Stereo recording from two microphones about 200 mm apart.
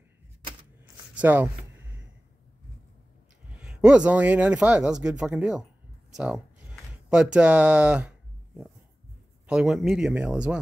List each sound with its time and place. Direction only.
1.1 s a sound: 10° right (ahead or behind)
3.5 s a man's voice: 5° right (ahead or behind)
9.5 s a man's voice: 5° right (ahead or behind)